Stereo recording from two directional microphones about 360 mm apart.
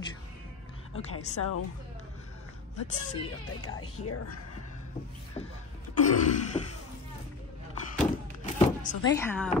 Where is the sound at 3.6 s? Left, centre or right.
Left.